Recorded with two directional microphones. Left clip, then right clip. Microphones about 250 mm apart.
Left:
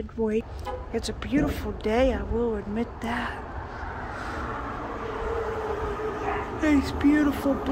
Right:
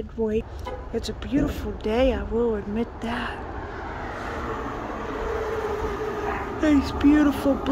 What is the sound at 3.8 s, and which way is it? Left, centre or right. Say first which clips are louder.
Vehicle: right 1 dB; right.